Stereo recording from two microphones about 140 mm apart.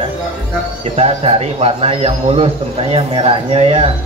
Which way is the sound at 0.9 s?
45° right (ahead or behind).